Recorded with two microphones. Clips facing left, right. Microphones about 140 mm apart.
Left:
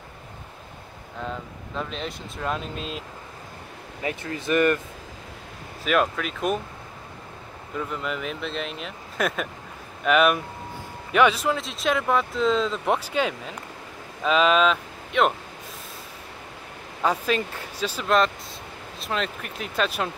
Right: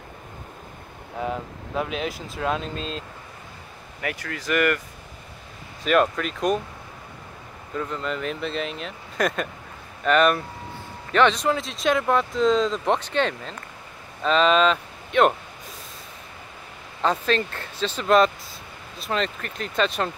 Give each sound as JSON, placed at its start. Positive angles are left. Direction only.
{"t": 1.8, "sound": "speech", "side_deg": -5}
{"t": 4.0, "sound": "speech", "side_deg": 25}
{"t": 5.9, "sound": "speech", "side_deg": 0}
{"t": 7.7, "sound": "speech", "side_deg": 5}
{"t": 17.0, "sound": "speech", "side_deg": 10}
{"t": 18.0, "sound": "speech", "side_deg": 0}